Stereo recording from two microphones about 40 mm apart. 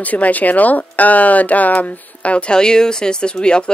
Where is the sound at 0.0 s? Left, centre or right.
Left.